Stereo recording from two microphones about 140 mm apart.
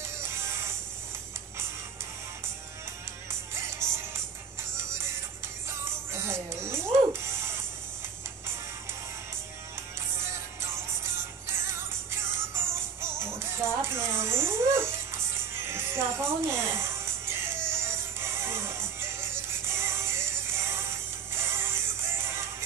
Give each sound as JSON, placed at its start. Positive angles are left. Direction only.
{"t": 0.0, "sound": "music", "side_deg": -20}
{"t": 3.3, "sound": "music", "side_deg": -20}
{"t": 10.1, "sound": "music", "side_deg": -20}